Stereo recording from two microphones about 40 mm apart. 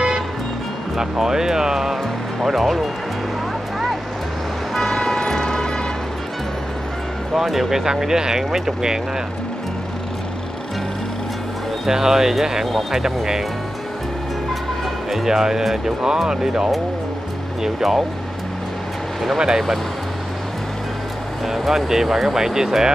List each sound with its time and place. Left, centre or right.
0.9 s speech: centre
4.7 s vehicle: centre
7.3 s speech: centre
11.8 s speech: centre
15.0 s speech: centre
19.3 s speech: centre
21.5 s speech: centre